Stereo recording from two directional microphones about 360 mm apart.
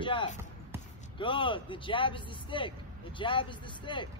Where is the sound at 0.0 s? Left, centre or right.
Centre.